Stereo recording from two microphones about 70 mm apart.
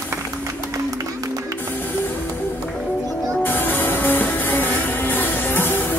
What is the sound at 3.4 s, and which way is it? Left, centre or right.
Music, left.